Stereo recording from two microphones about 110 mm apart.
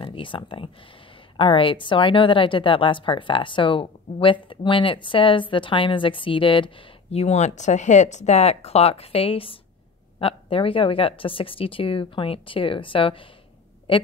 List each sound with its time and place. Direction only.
0.0 s a woman's voice: 50° left (ahead or behind)